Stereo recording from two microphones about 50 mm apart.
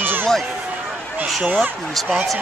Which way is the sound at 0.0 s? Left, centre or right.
Right.